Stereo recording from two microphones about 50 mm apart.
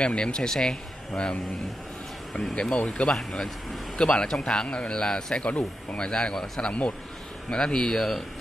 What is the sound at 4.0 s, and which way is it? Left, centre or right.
Speech, centre.